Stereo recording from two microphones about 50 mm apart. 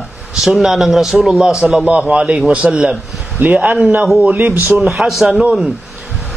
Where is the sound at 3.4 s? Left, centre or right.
Right.